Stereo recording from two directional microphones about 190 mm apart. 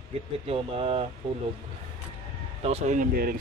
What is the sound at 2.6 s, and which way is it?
Speech, 35° right (ahead or behind).